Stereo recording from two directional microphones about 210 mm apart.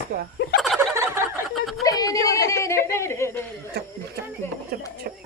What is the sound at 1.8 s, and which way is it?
Speech, 15° left (ahead or behind).